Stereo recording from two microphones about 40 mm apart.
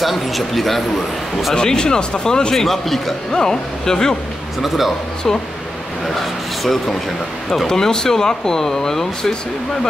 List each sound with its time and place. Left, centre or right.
0.0 s a man's voice: centre
1.5 s speech: centre
2.6 s speech: centre
4.6 s a man's voice: centre
6.6 s speech: centre